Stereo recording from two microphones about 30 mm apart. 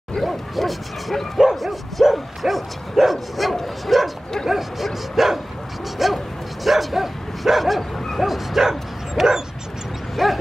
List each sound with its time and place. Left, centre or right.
0.2 s speech: centre
1.5 s bow-wow: centre
4.5 s speech: centre
6.1 s bow-wow: centre